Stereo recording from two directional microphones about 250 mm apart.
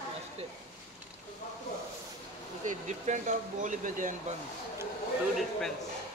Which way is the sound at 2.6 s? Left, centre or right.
Right.